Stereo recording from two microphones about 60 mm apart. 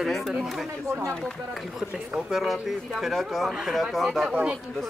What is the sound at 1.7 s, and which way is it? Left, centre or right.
Speech, centre.